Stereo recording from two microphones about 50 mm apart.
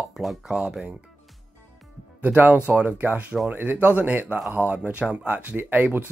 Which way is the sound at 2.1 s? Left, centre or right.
Right.